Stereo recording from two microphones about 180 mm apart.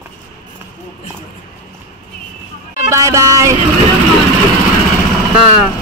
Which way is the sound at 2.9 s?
15° right (ahead or behind).